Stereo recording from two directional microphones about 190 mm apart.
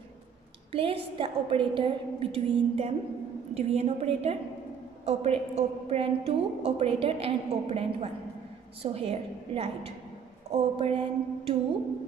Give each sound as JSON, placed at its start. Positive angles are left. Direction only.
{"t": 0.7, "sound": "a woman's voice", "side_deg": -30}